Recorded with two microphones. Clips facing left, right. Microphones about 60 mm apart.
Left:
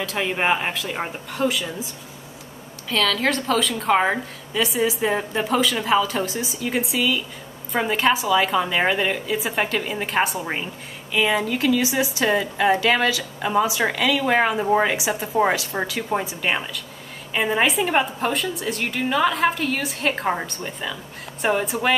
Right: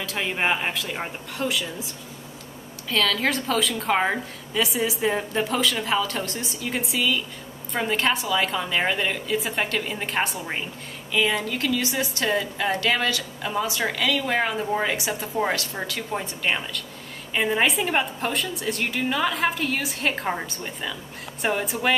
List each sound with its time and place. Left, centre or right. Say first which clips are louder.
0.0 s a woman's voice: left 3 dB; centre
15.0 s a woman's voice: left 4 dB; centre
15.3 s a woman's voice: left 6 dB; centre